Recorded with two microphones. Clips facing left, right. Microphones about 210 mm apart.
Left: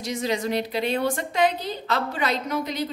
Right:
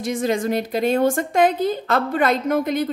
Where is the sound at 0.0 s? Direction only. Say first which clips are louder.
Right 5 dB; 50° right (ahead or behind).